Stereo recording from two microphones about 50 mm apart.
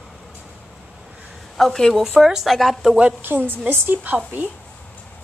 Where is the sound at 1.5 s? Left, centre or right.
Centre.